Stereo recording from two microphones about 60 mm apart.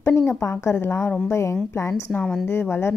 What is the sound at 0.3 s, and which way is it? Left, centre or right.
Speech, left.